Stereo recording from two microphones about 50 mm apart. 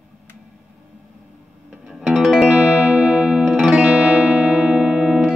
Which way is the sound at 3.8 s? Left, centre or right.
Right.